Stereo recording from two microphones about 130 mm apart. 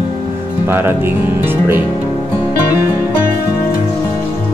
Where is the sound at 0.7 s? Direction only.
15° right (ahead or behind).